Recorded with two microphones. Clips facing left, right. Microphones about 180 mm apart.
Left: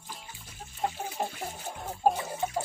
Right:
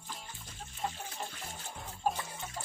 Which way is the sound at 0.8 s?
60° left (ahead or behind).